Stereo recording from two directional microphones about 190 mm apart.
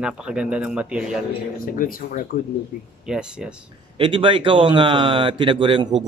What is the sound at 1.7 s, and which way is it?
Speech, 45° left (ahead or behind).